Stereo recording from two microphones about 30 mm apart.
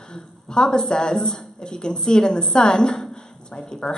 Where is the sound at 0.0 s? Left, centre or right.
Left.